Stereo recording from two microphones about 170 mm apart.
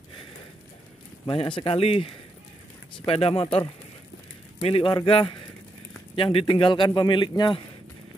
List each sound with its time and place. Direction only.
1.2 s speech: 30° left (ahead or behind)
4.6 s a man's voice: 35° left (ahead or behind)